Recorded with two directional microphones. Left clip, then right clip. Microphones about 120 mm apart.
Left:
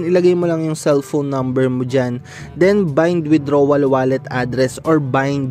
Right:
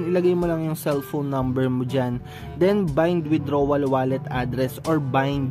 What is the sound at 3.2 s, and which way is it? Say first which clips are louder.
Speech: left 8 dB; 50° left (ahead or behind).